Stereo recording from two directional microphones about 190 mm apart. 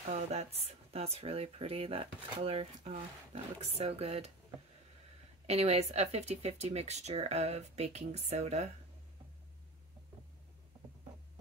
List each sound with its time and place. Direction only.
0.1 s speech: 35° right (ahead or behind)
5.5 s speech: 35° right (ahead or behind)